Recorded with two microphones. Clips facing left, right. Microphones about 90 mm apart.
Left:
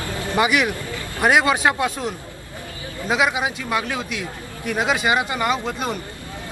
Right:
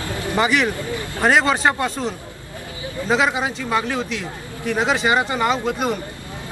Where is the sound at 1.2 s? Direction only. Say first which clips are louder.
Even; 5° left (ahead or behind).